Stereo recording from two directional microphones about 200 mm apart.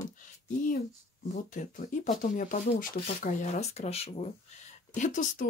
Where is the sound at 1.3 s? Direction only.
40° left (ahead or behind).